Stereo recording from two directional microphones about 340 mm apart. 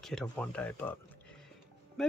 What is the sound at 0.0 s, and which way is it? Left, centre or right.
Speech, centre.